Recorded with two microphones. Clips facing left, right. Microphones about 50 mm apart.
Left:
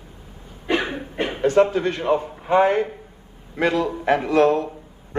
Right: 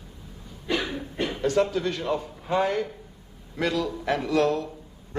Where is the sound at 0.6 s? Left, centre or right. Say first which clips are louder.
Left 5 dB; left.